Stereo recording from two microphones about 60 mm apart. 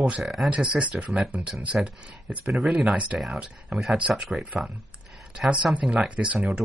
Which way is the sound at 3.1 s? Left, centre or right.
Centre.